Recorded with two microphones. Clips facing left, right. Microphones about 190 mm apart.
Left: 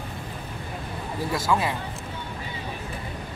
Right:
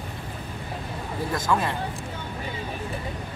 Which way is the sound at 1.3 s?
5° left (ahead or behind).